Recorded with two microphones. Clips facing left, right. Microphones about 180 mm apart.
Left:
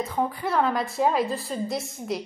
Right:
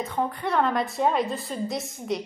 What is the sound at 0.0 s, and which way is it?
A woman's voice, centre (ahead or behind).